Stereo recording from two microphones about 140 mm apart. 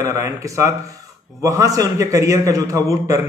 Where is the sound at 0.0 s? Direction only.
20° right (ahead or behind).